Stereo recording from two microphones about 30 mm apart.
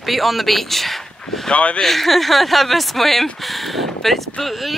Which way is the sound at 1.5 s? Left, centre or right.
Left.